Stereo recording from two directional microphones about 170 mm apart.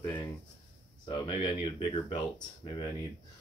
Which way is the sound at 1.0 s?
25° left (ahead or behind).